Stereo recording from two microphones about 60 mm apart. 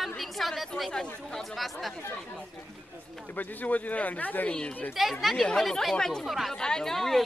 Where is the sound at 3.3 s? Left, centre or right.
Left.